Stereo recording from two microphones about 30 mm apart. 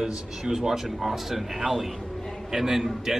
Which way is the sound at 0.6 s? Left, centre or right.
Centre.